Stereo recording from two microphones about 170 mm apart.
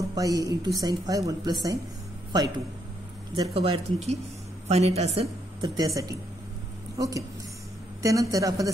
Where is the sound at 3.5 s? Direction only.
35° right (ahead or behind).